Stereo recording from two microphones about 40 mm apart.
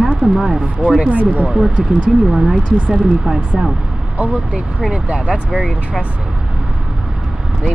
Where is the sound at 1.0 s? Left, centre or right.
Right.